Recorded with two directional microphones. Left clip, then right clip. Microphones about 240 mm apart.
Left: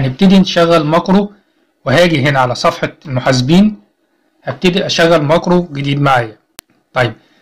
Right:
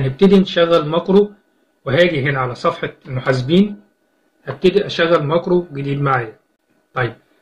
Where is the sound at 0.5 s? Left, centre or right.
Left.